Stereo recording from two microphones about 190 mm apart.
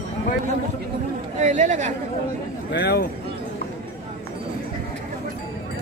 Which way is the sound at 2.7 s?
60° left (ahead or behind).